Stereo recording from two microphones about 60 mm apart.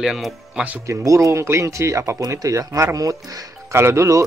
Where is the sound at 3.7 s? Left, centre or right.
Right.